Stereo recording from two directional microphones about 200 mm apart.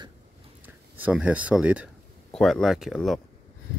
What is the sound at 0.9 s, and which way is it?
Speech, 5° right (ahead or behind).